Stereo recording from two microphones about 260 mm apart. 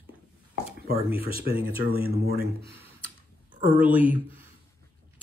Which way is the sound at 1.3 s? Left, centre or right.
Right.